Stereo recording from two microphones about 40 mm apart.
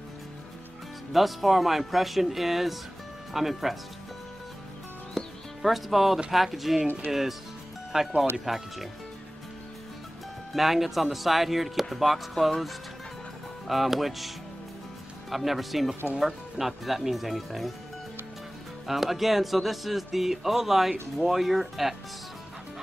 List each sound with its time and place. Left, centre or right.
1.1 s a man's voice: centre
5.2 s music: centre
5.6 s a man's voice: centre
7.9 s speech: centre
8.5 s a man's voice: centre
10.5 s a man's voice: centre
18.9 s a man's voice: centre